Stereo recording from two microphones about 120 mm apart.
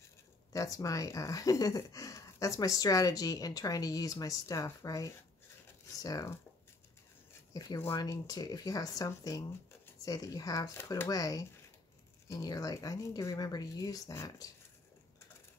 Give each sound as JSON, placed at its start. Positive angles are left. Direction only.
{"t": 0.5, "sound": "speech", "side_deg": 30}
{"t": 7.5, "sound": "speech", "side_deg": 30}